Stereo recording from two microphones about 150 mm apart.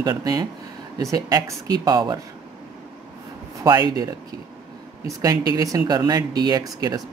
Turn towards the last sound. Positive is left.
turn(degrees=-25)  # may be behind; listen again after turning